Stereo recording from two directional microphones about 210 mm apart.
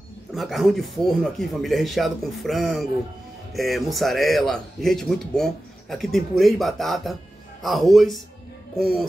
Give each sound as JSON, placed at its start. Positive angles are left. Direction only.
{"t": 0.3, "sound": "speech", "side_deg": 0}